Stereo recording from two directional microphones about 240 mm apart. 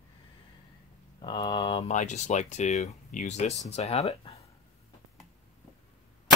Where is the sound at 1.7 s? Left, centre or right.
Left.